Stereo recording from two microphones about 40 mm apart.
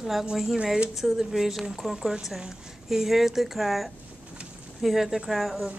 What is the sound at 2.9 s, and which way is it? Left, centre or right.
A woman's voice, centre.